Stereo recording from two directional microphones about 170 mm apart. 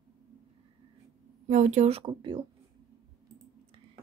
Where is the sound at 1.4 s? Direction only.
45° right (ahead or behind).